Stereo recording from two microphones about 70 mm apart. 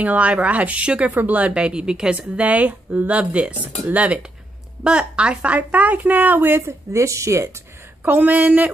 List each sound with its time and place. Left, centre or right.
0.0 s speech: centre
6.9 s speech: right
8.0 s speech: right